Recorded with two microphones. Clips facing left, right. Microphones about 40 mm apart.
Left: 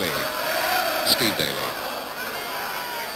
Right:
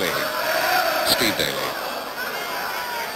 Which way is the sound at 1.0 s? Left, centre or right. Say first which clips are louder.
Right 2 dB; centre.